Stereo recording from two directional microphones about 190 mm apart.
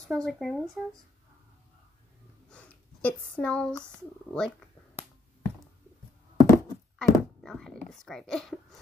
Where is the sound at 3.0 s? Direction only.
5° left (ahead or behind).